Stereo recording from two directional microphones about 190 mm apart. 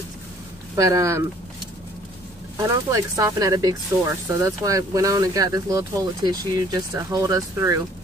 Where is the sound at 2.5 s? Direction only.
15° right (ahead or behind).